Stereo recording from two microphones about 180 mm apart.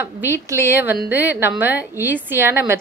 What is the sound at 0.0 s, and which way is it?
A woman's voice, 10° right (ahead or behind).